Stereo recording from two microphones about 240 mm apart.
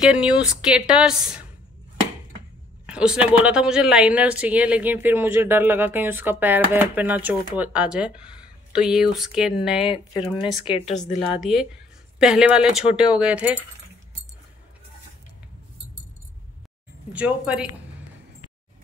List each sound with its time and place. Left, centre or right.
0.0 s a woman's voice: centre
2.9 s speech: centre
9.8 s speech: left
12.2 s speech: centre
17.1 s speech: centre